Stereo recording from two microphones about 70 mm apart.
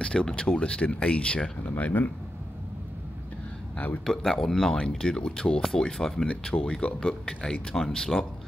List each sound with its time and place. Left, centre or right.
0.0 s speech: centre
3.7 s speech: left
4.0 s speech: centre